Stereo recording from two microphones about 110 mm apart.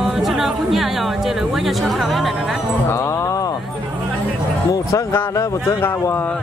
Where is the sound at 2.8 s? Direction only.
25° left (ahead or behind).